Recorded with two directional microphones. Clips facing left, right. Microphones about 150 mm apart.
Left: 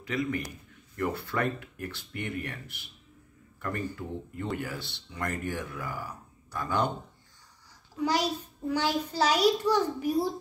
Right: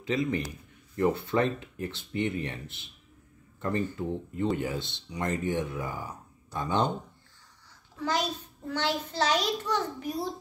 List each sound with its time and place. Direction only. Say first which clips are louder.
0.0 s speech: right 2 dB; 25° right (ahead or behind)
3.9 s speech: right 4 dB; 20° right (ahead or behind)
8.0 s a child's voice: left 2 dB; 10° left (ahead or behind)